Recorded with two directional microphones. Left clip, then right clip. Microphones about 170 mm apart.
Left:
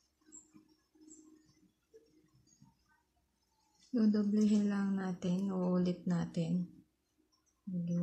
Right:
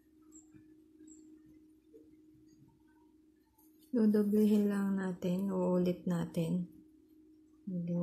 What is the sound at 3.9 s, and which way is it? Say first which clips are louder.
A woman's voice: right 3 dB; 15° right (ahead or behind).